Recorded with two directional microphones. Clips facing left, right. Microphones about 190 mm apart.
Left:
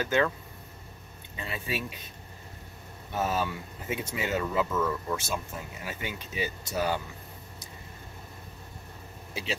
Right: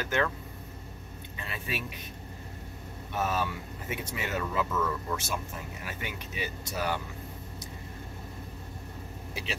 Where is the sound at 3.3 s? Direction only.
25° left (ahead or behind).